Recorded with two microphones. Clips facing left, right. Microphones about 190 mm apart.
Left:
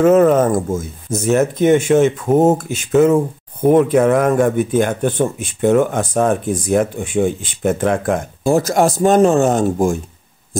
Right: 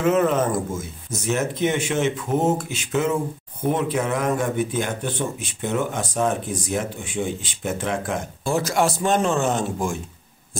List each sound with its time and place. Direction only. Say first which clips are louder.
0.0 s a man's voice: left 8 dB; 45° left (ahead or behind)